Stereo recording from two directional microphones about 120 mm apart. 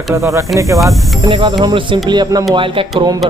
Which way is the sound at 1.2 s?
45° right (ahead or behind).